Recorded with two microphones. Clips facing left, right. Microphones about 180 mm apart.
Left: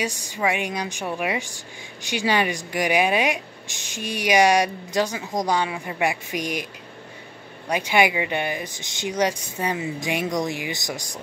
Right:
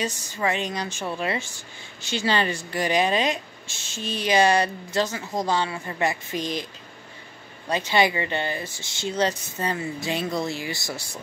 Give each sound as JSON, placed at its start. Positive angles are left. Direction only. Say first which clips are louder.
{"t": 0.0, "sound": "a woman's voice", "louder": "left 2 dB", "side_deg": 10}